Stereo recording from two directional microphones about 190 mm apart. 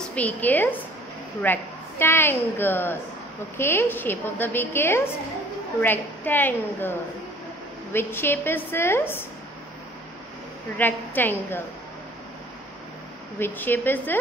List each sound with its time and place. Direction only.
0.0 s a woman's voice: 5° left (ahead or behind)
7.9 s a woman's voice: 10° left (ahead or behind)
10.8 s a woman's voice: 10° left (ahead or behind)
13.4 s a woman's voice: 10° left (ahead or behind)